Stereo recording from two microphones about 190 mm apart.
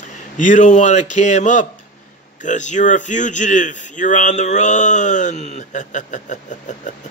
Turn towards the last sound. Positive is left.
turn(degrees=40)  # may be behind; listen again after turning